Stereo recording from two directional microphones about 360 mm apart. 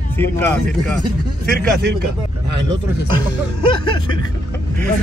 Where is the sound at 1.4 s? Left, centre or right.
Right.